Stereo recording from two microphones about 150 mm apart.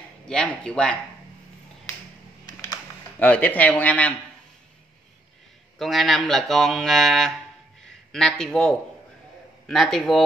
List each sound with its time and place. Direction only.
0.3 s speech: 5° left (ahead or behind)
3.2 s speech: 10° left (ahead or behind)
5.8 s mantra: centre (ahead or behind)
7.8 s a man's voice: 5° left (ahead or behind)
9.7 s mantra: centre (ahead or behind)